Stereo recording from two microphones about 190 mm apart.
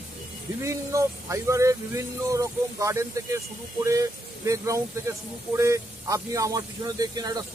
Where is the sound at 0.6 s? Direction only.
15° right (ahead or behind).